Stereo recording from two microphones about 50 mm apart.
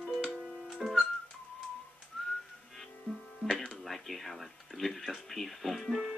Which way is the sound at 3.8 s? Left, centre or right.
Centre.